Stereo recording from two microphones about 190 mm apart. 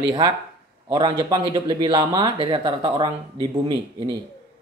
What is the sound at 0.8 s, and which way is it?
Speech, 20° right (ahead or behind).